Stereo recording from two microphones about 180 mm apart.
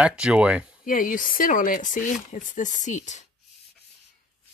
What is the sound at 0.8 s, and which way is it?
Speech, 50° left (ahead or behind).